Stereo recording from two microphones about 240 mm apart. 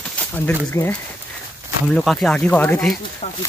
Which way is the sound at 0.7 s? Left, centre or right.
Centre.